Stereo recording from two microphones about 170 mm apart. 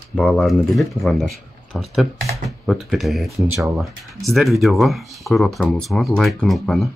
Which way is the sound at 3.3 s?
15° right (ahead or behind).